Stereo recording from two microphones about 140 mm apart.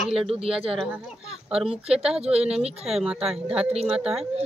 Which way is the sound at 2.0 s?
5° right (ahead or behind).